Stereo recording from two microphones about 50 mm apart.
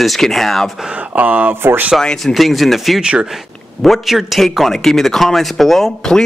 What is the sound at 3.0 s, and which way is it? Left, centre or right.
Speech, centre.